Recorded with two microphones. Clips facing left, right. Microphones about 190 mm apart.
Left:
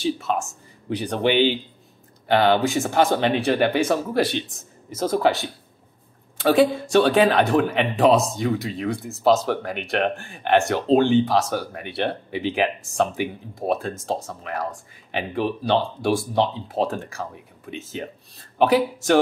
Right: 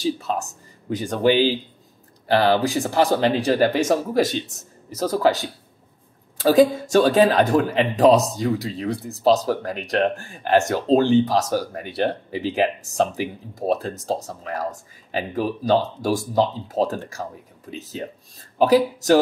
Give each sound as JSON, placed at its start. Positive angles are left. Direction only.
{"t": 0.0, "sound": "speech", "side_deg": -40}